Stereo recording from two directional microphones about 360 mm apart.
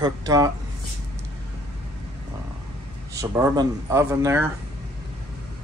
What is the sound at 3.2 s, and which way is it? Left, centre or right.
A man's voice, centre.